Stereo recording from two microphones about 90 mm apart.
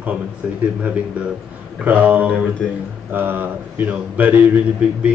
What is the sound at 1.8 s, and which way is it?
Speech, 20° right (ahead or behind).